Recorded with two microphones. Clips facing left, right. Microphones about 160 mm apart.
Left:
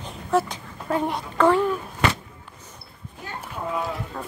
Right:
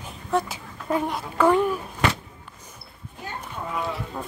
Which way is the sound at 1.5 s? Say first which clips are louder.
Even; 15° right (ahead or behind).